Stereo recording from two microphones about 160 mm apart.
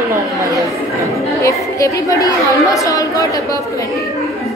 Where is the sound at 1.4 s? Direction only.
20° left (ahead or behind).